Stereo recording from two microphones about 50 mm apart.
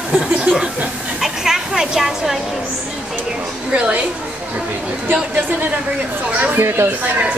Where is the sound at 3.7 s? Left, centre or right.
Right.